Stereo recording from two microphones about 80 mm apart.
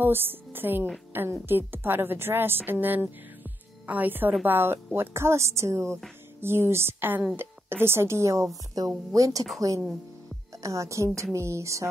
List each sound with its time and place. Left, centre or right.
0.0 s a woman's voice: right
10.6 s a woman's voice: right